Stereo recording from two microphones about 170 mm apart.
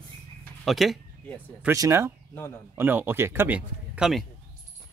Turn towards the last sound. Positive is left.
turn(degrees=0)  # may be behind; listen again after turning